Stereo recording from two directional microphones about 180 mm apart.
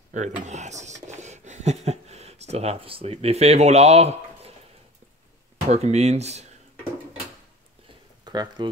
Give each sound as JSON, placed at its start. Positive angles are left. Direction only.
{"t": 0.1, "sound": "speech", "side_deg": -40}
{"t": 5.7, "sound": "speech", "side_deg": -35}
{"t": 8.3, "sound": "speech", "side_deg": -25}